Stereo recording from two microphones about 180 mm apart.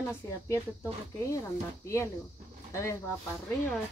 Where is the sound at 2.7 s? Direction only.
15° left (ahead or behind).